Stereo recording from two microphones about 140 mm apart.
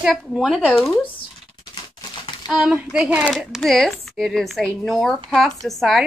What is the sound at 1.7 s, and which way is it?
Typewriter, 30° left (ahead or behind).